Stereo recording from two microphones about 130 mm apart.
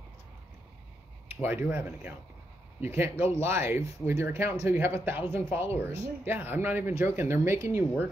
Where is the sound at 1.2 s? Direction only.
15° right (ahead or behind).